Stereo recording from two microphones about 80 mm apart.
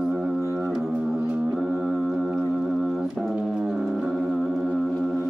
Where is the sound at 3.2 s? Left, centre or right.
Centre.